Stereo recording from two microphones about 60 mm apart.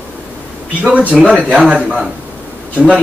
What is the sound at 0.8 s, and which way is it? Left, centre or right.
A man's voice, right.